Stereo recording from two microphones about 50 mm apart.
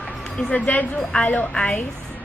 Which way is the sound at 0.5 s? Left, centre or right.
Left.